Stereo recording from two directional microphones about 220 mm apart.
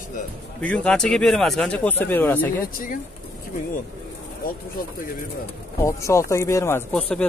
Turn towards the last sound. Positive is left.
turn(degrees=5)  # may be behind; listen again after turning